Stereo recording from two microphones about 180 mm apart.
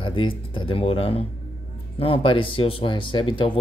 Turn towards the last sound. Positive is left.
turn(degrees=25)  # may be behind; listen again after turning